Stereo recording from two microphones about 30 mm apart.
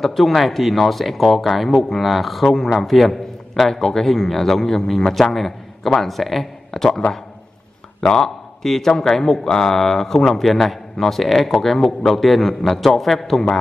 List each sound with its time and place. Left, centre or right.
0.0 s a man's voice: centre
6.7 s speech: centre
8.0 s a man's voice: left